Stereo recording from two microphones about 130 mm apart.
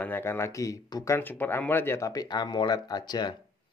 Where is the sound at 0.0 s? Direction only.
15° left (ahead or behind); by 3.3 s 35° left (ahead or behind).